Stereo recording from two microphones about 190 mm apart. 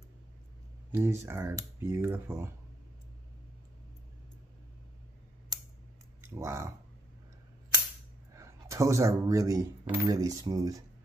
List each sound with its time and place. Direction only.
0.9 s speech: 10° right (ahead or behind)
6.2 s speech: 15° right (ahead or behind)
8.4 s speech: 15° right (ahead or behind)